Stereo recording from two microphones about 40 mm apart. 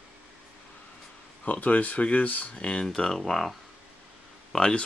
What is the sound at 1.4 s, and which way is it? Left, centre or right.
Speech, left.